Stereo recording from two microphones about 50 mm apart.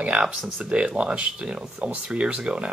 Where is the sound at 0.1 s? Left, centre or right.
Right.